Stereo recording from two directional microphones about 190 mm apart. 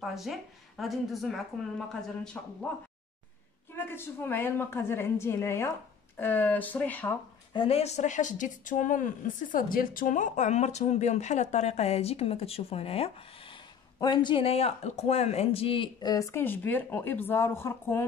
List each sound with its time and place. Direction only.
0.0 s a woman's voice: centre (ahead or behind)
7.5 s speech: 30° left (ahead or behind); by 18.0 s 10° left (ahead or behind)